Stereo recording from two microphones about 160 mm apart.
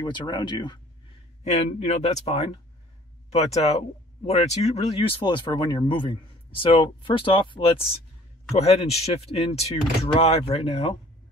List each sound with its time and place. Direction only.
0.0 s speech: 25° left (ahead or behind)
1.4 s speech: 45° left (ahead or behind)